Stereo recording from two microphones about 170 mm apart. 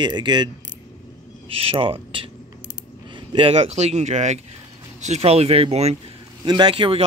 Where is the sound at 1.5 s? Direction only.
35° right (ahead or behind).